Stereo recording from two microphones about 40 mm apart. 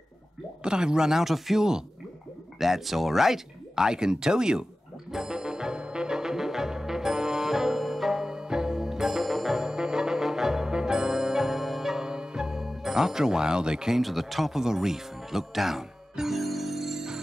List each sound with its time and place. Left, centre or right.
0.7 s speech: centre
5.1 s music: centre
9.6 s music: centre
14.0 s music: centre